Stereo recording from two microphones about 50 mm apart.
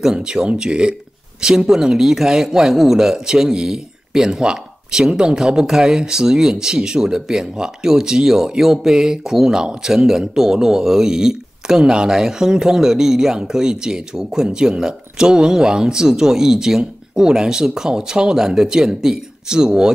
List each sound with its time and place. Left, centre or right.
0.0 s speech: centre